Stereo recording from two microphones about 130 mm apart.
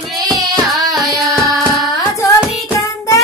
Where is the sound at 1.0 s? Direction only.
Centre (ahead or behind).